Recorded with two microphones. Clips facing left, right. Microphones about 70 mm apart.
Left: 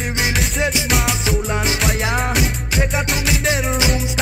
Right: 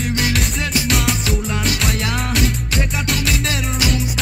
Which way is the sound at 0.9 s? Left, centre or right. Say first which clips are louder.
Even; centre.